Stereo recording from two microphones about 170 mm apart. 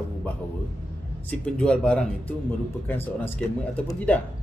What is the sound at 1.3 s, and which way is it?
Speech, 5° left (ahead or behind).